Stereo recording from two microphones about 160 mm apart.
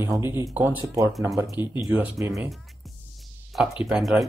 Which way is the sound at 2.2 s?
20° right (ahead or behind).